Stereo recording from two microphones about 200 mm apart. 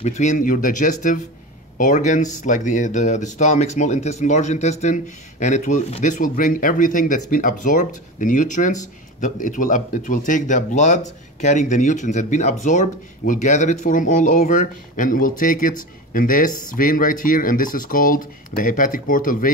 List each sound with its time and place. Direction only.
0.0 s speech: 35° left (ahead or behind)